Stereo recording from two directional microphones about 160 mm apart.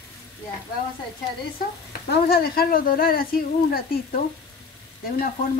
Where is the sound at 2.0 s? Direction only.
75° left (ahead or behind).